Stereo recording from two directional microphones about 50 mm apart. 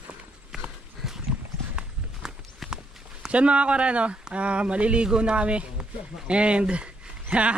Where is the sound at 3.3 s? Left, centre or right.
Right.